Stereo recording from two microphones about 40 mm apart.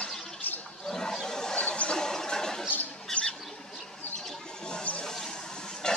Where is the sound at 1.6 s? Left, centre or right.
Left.